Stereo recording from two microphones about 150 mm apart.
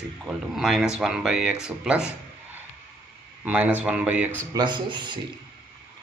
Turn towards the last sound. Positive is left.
turn(degrees=-30)  # may be behind; listen again after turning